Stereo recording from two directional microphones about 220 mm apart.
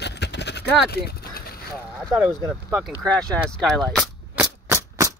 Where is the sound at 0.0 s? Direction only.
50° left (ahead or behind).